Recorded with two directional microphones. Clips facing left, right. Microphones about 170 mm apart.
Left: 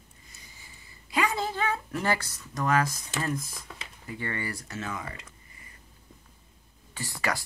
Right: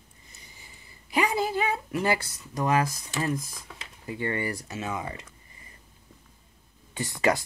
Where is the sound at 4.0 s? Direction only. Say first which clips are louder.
Right 5 dB; 20° right (ahead or behind).